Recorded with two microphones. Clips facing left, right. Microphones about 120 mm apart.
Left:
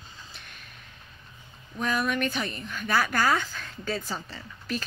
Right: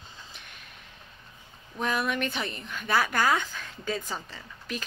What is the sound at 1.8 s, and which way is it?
A woman's voice, 20° right (ahead or behind).